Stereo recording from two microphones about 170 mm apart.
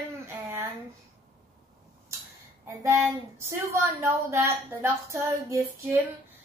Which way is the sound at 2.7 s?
15° right (ahead or behind).